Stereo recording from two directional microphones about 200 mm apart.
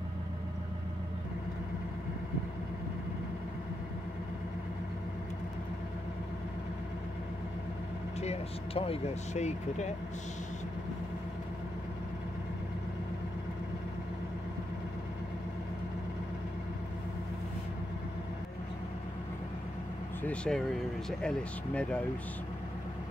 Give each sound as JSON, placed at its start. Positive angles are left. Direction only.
{"t": 8.2, "sound": "speech", "side_deg": 30}
{"t": 20.2, "sound": "speech", "side_deg": 5}